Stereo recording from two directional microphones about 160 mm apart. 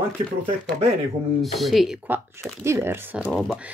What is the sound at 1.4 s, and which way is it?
Speech, centre (ahead or behind).